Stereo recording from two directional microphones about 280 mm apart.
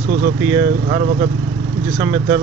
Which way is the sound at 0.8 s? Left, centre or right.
Right.